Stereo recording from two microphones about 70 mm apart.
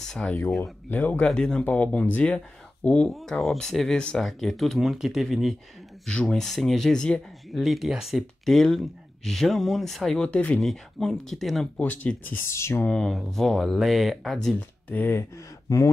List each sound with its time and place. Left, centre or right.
0.0 s speech: centre
0.8 s speech: left
3.1 s speech: centre
6.0 s speech: centre
7.5 s speech: centre
10.2 s speech: centre
10.6 s speech: centre
11.7 s speech: left
12.4 s speech: left
13.1 s speech: centre
14.9 s speech: left
15.1 s speech: left